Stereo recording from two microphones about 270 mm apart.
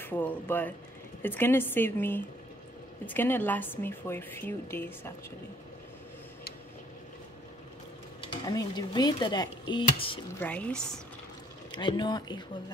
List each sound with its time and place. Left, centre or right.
0.0 s a woman's voice: centre
8.2 s speech: centre
10.4 s speech: centre
11.7 s a woman's voice: centre